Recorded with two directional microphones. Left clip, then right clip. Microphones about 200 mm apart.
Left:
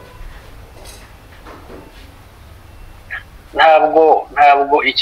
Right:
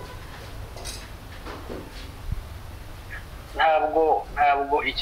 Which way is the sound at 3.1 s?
30° left (ahead or behind).